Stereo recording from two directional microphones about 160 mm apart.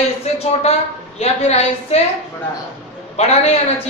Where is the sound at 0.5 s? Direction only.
40° left (ahead or behind).